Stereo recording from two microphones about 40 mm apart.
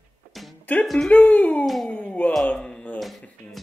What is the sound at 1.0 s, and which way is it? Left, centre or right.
Speech, left.